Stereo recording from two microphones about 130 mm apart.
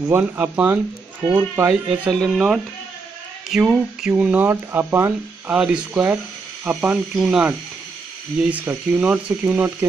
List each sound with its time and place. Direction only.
0.1 s speech: 15° right (ahead or behind)
1.9 s speech: centre (ahead or behind)